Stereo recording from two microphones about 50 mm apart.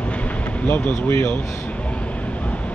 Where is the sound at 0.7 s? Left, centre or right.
Left.